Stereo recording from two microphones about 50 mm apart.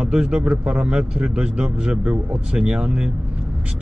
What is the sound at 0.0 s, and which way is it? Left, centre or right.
A man's voice, centre.